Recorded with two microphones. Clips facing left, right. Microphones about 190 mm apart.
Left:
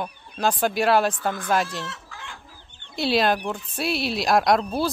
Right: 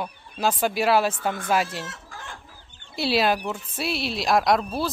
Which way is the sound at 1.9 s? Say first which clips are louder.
Even; 45° right (ahead or behind).